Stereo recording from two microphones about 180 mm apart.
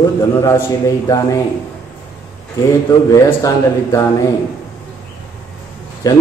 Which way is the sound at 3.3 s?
20° left (ahead or behind).